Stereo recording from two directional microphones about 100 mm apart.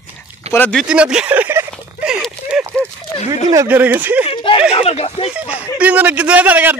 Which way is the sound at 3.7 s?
20° right (ahead or behind).